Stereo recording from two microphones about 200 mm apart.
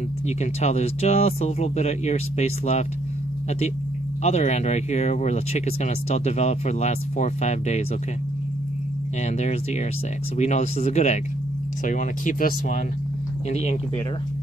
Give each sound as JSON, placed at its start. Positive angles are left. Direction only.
{"t": 0.4, "sound": "speech", "side_deg": 35}
{"t": 4.2, "sound": "speech", "side_deg": 35}
{"t": 9.2, "sound": "speech", "side_deg": 35}